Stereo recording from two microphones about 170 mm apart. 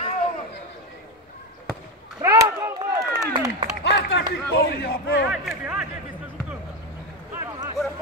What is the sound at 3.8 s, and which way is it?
Clapping, 85° left.